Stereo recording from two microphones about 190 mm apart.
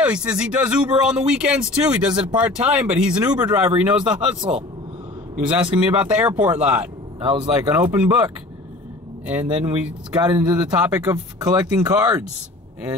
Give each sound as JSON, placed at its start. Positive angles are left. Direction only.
{"t": 0.0, "sound": "speech", "side_deg": -5}
{"t": 10.1, "sound": "speech", "side_deg": -20}
{"t": 10.7, "sound": "speech", "side_deg": -5}